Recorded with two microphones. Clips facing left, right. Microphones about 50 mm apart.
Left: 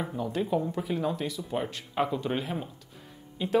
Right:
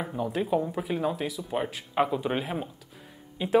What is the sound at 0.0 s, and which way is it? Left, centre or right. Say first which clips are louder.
Speech: right 1 dB; centre.